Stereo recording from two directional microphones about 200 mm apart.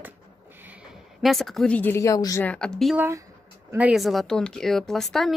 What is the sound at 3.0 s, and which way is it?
A woman's voice, 15° right (ahead or behind).